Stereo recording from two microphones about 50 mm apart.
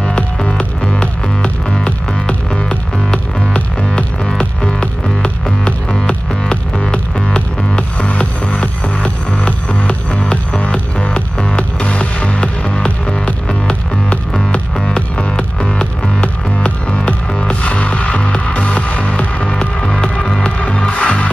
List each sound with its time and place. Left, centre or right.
0.0 s music: centre
15.8 s music: left